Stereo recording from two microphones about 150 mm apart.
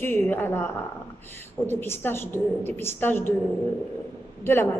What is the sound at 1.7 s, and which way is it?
A woman's voice, 15° left (ahead or behind).